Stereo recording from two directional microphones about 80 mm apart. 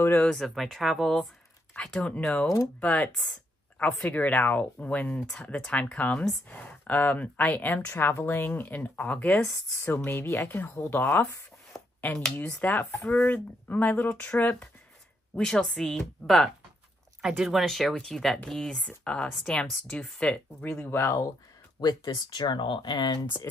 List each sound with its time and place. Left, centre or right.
0.0 s speech: left
0.3 s speech: centre
2.4 s speech: left
2.8 s speech: centre
12.0 s speech: centre
15.3 s speech: centre
17.2 s speech: centre
20.9 s speech: left
21.7 s speech: left